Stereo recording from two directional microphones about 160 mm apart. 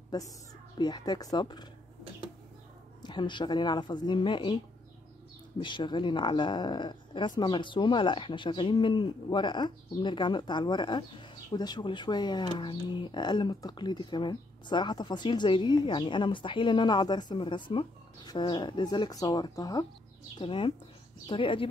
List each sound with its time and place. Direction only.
0.7 s speech: 25° left (ahead or behind)
3.0 s speech: 30° left (ahead or behind)
5.6 s speech: 30° left (ahead or behind)